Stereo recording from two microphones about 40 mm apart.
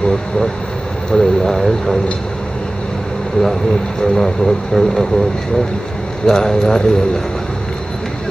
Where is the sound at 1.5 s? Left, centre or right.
Centre.